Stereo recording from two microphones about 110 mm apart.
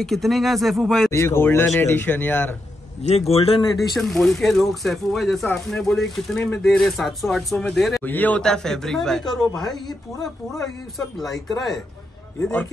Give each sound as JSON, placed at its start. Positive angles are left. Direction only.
{"t": 0.0, "sound": "speech", "side_deg": 0}
{"t": 1.1, "sound": "a man's voice", "side_deg": 25}
{"t": 3.0, "sound": "a man's voice", "side_deg": 70}
{"t": 3.7, "sound": "speech", "side_deg": 0}
{"t": 8.0, "sound": "a man's voice", "side_deg": 15}
{"t": 8.4, "sound": "speech", "side_deg": 5}
{"t": 11.1, "sound": "speech", "side_deg": 0}